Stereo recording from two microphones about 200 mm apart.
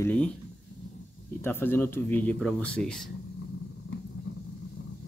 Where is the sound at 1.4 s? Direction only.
10° left (ahead or behind).